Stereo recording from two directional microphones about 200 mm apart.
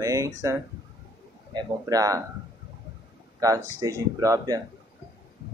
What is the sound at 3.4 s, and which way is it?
Speech, 15° right (ahead or behind).